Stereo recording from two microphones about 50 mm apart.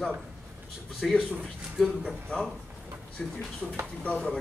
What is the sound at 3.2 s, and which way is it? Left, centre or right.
Speech, centre.